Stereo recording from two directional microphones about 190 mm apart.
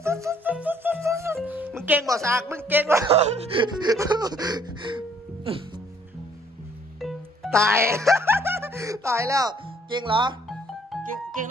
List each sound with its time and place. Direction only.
0.0 s music: 15° right (ahead or behind)
3.1 s music: 30° right (ahead or behind)
7.0 s music: centre (ahead or behind)
7.6 s speech: 15° right (ahead or behind)
10.5 s music: centre (ahead or behind)